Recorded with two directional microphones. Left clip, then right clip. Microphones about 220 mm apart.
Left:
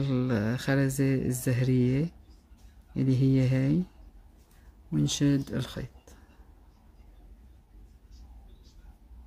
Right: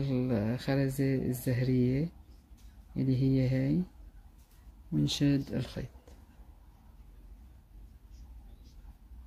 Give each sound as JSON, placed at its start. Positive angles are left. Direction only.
{"t": 0.0, "sound": "speech", "side_deg": 25}
{"t": 4.9, "sound": "speech", "side_deg": 15}